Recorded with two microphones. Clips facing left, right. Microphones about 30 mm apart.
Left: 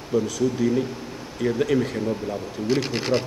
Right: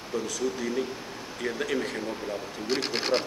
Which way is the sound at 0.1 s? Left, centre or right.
Centre.